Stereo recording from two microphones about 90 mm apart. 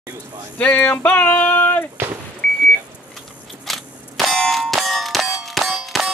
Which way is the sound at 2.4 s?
5° left (ahead or behind).